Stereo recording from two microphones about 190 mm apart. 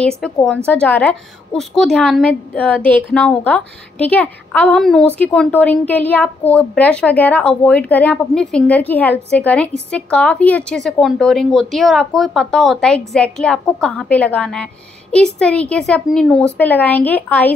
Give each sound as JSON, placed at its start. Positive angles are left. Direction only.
{"t": 0.2, "sound": "a woman's voice", "side_deg": 5}